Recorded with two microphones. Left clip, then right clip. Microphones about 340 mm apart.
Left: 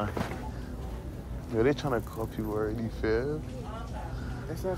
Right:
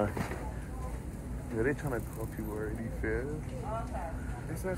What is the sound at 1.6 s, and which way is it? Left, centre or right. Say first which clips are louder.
Speech: left 6 dB; centre.